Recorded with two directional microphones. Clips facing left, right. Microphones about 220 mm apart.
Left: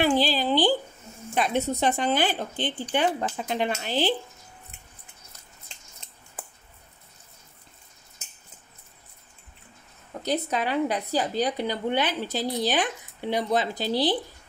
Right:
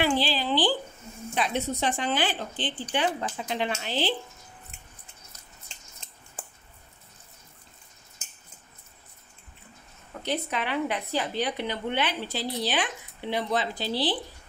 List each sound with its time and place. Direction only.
0.0 s a sound: 45° left (ahead or behind)
1.3 s speech: 45° left (ahead or behind)
10.2 s a woman's voice: 40° left (ahead or behind)